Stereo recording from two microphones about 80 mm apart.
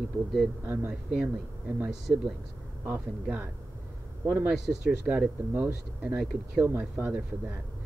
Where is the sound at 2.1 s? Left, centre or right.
Centre.